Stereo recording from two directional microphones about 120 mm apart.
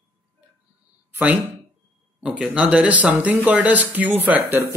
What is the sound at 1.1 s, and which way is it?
Speech, 15° right (ahead or behind).